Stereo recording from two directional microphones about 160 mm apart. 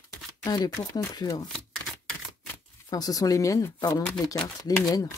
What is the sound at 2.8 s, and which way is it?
Speech, 25° left (ahead or behind).